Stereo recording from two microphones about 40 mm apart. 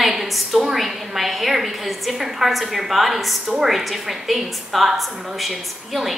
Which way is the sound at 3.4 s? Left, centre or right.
Centre.